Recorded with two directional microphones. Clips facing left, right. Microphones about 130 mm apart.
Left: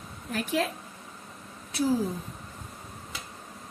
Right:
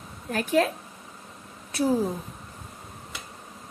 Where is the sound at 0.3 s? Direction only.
50° right (ahead or behind).